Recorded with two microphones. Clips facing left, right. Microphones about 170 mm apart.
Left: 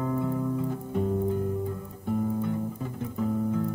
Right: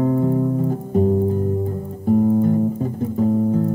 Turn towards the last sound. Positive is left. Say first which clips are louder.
# right 9 dB
turn(degrees=-35)  # may be behind; listen again after turning